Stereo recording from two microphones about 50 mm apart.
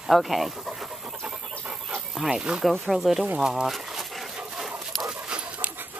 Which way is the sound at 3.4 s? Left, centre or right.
Centre.